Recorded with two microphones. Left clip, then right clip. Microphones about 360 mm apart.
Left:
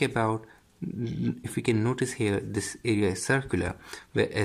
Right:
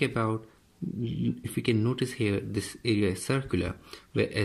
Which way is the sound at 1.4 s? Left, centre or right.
Centre.